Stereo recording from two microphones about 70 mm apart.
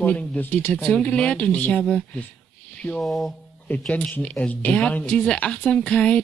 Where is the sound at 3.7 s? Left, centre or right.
Left.